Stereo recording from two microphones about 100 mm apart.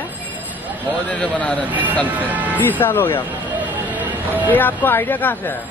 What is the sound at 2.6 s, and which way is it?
Speech, 20° left (ahead or behind).